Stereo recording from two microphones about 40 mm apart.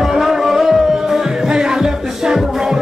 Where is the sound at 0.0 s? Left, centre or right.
Centre.